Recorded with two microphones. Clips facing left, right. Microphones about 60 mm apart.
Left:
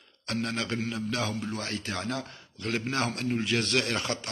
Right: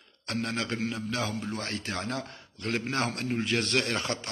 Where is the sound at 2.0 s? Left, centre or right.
Centre.